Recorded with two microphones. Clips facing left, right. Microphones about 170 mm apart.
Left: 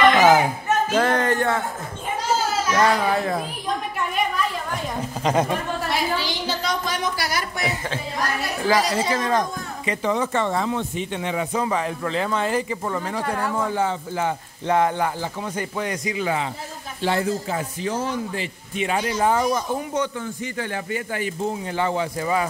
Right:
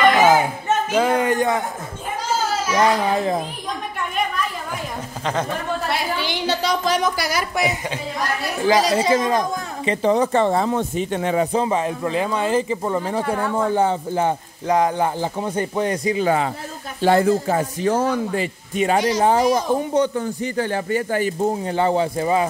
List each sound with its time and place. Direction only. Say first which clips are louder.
0.1 s a sound: even; centre (ahead or behind)
0.9 s speech: right 3 dB; 10° right (ahead or behind)
2.7 s speech: right 2 dB; 20° right (ahead or behind)
6.2 s a woman's voice: right 4 dB; 70° right (ahead or behind); by 7.6 s 90° right
8.6 s speech: right 4 dB; 20° right (ahead or behind)
9.8 s a man's voice: right 5 dB; 35° right (ahead or behind)
11.5 s speech: right 3 dB; 25° right (ahead or behind)
13.2 s speech: right 3 dB; centre (ahead or behind)
13.7 s a man's voice: right 5 dB; 30° right (ahead or behind)
14.7 s speech: right 2 dB; 15° right (ahead or behind)
15.4 s a man's voice: right 6 dB; 30° right (ahead or behind)
17.0 s speech: right 7 dB; 50° right (ahead or behind)
18.9 s speech: right 5 dB; 90° right
19.9 s a man's voice: right 6 dB; 35° right (ahead or behind)